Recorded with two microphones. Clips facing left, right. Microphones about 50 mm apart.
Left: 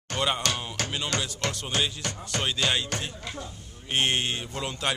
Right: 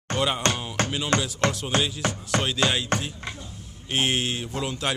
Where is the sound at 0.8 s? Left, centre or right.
Centre.